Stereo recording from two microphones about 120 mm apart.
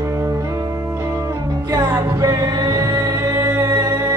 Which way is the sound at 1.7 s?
25° right (ahead or behind).